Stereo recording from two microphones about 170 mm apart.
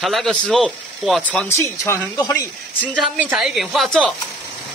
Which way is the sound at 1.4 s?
15° left (ahead or behind).